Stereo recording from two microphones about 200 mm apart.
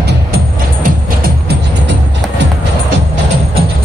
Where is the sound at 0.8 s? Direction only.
45° right (ahead or behind).